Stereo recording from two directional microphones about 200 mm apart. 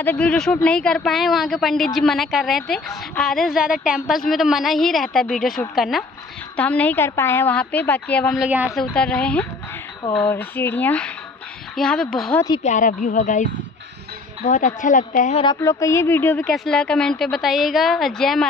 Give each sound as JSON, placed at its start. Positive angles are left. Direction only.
{"t": 0.0, "sound": "a woman's voice", "side_deg": 5}
{"t": 12.6, "sound": "a woman's voice", "side_deg": 40}
{"t": 15.4, "sound": "a woman's voice", "side_deg": 15}